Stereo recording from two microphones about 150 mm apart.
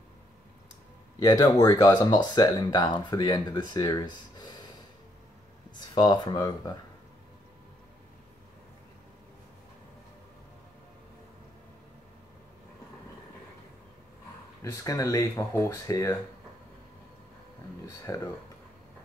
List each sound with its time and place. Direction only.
1.2 s speech: 25° left (ahead or behind)
5.8 s speech: 25° left (ahead or behind)
14.6 s speech: 20° left (ahead or behind)
17.8 s speech: 20° left (ahead or behind)